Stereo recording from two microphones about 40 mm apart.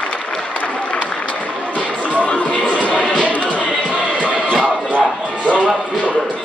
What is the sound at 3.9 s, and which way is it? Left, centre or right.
Music, right.